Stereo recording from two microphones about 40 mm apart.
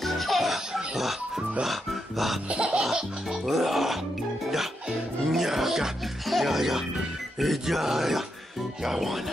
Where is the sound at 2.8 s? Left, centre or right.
Centre.